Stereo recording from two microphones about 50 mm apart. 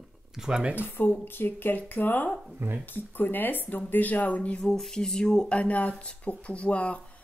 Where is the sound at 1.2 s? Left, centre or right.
Left.